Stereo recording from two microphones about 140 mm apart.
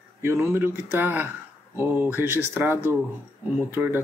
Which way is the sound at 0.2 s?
15° right (ahead or behind).